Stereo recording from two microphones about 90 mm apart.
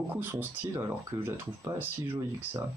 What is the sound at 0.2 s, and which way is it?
Speech, 25° right (ahead or behind).